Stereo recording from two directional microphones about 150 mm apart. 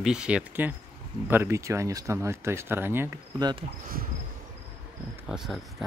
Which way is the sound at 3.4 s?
30° right (ahead or behind).